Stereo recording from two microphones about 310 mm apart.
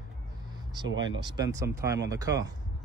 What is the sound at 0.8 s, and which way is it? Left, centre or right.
Speech, right.